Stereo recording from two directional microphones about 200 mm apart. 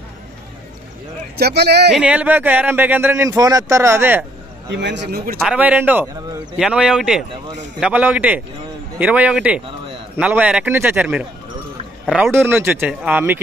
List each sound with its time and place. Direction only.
1.3 s speech: 55° right (ahead or behind)
2.0 s speech: 5° right (ahead or behind)
4.7 s speech: 60° right (ahead or behind)
5.4 s speech: 5° right (ahead or behind)